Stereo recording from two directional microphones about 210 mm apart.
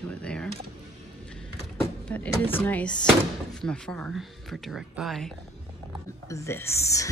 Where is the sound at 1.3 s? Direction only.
5° left (ahead or behind).